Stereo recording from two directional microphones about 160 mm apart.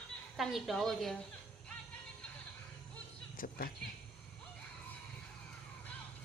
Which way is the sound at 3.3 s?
60° left (ahead or behind).